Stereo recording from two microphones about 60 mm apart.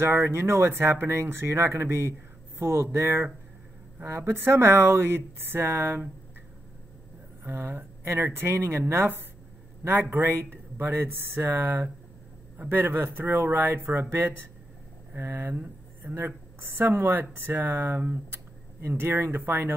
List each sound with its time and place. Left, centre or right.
0.0 s speech: right
7.4 s speech: right